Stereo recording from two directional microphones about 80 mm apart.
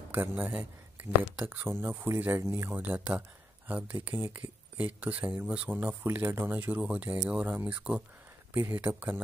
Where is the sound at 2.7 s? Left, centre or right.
Right.